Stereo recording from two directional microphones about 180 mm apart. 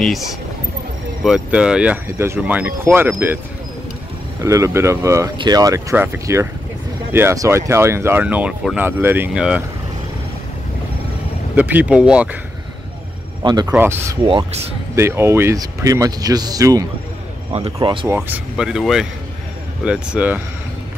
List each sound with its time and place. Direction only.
1.2 s speech: 5° right (ahead or behind)
4.4 s speech: 15° right (ahead or behind)
11.5 s speech: 10° right (ahead or behind)
13.4 s speech: 25° right (ahead or behind)
13.7 s speech: 15° right (ahead or behind)
14.2 s speech: 30° right (ahead or behind)
15.0 s speech: 15° right (ahead or behind)
17.5 s speech: 35° right (ahead or behind)
18.0 s speech: 10° right (ahead or behind)